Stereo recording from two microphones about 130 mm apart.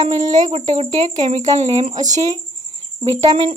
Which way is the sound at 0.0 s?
35° right (ahead or behind).